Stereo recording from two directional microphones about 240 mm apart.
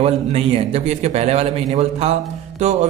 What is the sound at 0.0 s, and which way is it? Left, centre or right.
Speech, right.